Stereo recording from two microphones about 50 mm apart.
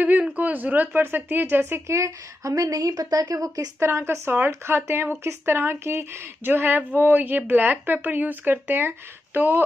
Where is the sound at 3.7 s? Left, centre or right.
Right.